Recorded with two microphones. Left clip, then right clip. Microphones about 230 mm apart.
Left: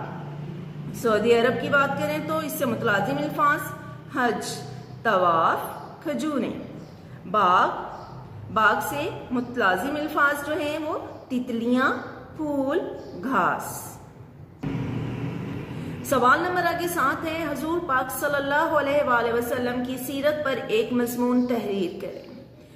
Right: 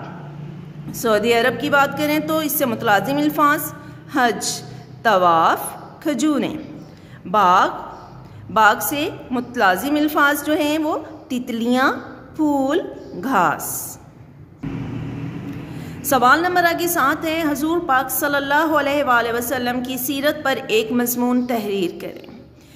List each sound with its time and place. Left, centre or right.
1.0 s a woman's voice: right
16.1 s a woman's voice: right